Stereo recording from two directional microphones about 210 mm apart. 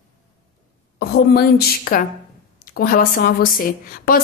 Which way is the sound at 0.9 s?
50° left (ahead or behind).